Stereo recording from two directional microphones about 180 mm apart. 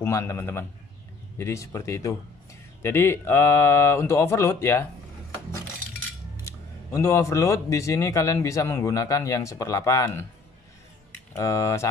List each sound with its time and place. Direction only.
0.0 s speech: 15° left (ahead or behind)
6.4 s speech: 15° left (ahead or behind)
11.3 s speech: 15° left (ahead or behind)